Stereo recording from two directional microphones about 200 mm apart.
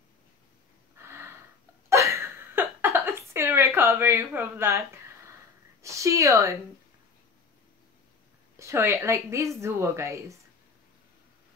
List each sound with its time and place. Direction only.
0.9 s a sound: 15° right (ahead or behind)
5.8 s speech: 15° right (ahead or behind)
8.5 s a woman's voice: 15° right (ahead or behind)